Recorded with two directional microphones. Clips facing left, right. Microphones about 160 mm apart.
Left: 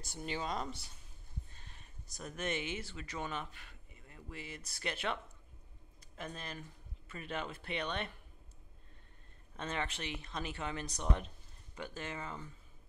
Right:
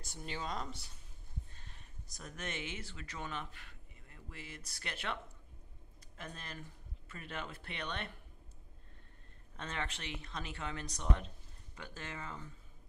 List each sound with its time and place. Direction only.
0.2 s speech: 15° left (ahead or behind)
2.2 s speech: 15° left (ahead or behind)
6.1 s speech: 15° left (ahead or behind)
9.6 s speech: 15° left (ahead or behind)